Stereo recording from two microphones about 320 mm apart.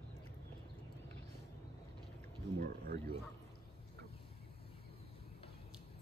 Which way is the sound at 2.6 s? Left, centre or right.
Right.